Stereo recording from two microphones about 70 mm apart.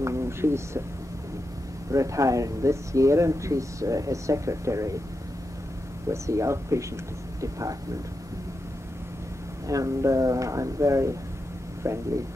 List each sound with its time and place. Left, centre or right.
0.0 s speech: right
1.9 s speech: right
6.0 s speech: right
9.7 s speech: right